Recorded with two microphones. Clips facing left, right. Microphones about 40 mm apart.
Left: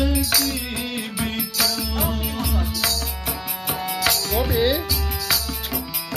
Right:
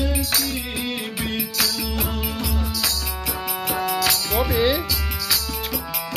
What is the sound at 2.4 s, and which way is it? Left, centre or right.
Music, left.